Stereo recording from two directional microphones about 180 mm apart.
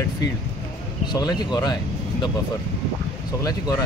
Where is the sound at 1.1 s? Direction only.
20° left (ahead or behind).